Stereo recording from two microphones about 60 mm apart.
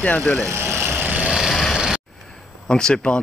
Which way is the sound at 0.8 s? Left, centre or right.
Right.